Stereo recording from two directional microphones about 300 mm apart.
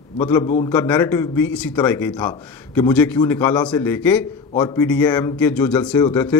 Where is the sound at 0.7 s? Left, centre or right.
Centre.